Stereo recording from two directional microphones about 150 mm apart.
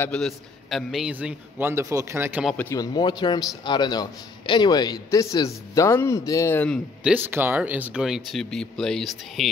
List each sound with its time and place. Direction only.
0.0 s a man's voice: 5° left (ahead or behind); by 2.4 s 15° right (ahead or behind)
2.5 s a man's voice: 10° left (ahead or behind)
2.8 s a man's voice: 30° left (ahead or behind); by 6.8 s 10° left (ahead or behind)
7.0 s speech: 10° right (ahead or behind)